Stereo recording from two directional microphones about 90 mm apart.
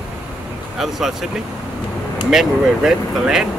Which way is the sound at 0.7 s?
5° right (ahead or behind).